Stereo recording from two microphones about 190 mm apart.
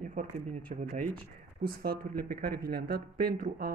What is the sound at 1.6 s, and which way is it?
Speech, 50° right (ahead or behind).